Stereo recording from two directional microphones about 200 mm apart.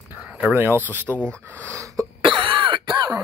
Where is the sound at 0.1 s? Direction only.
5° right (ahead or behind).